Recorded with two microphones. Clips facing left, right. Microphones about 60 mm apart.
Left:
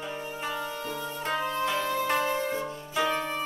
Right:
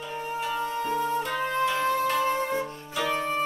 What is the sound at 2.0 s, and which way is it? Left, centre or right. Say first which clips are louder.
Music: right 2 dB; left.